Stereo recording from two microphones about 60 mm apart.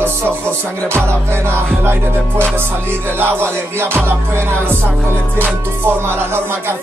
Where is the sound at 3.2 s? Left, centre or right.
Right.